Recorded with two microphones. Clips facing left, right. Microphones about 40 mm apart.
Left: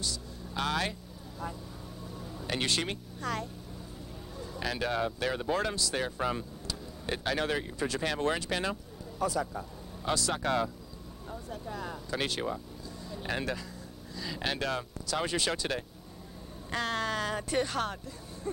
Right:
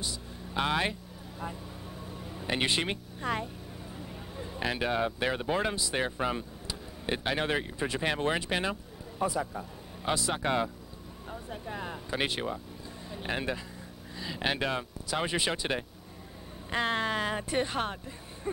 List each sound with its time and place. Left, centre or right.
0.0 s speech: right
1.4 s music: right
3.9 s speech: right